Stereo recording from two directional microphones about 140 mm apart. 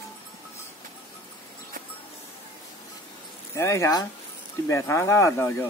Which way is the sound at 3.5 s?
20° left (ahead or behind).